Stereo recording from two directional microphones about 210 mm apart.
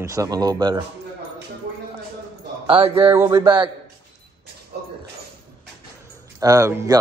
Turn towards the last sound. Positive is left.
turn(degrees=-15)  # may be behind; listen again after turning